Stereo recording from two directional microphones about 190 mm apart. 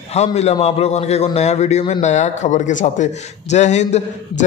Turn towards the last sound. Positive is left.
turn(degrees=35)  # may be behind; listen again after turning